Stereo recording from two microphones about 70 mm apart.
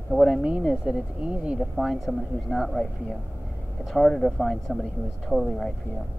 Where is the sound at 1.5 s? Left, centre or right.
Centre.